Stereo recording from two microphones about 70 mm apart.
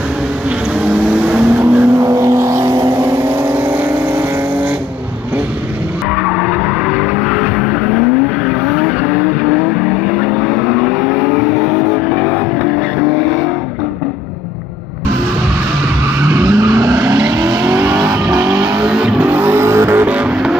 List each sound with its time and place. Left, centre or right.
1.2 s vehicle: right
2.0 s vehicle: right
16.3 s vehicle: right
18.8 s music: centre; by 20.1 s right
20.1 s vehicle: centre